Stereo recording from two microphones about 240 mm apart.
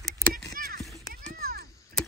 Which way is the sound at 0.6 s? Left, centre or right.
Right.